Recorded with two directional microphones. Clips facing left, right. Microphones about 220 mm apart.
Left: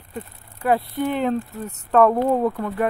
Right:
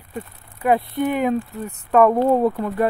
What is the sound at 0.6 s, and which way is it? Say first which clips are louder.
Speech: right 2 dB; 20° right (ahead or behind).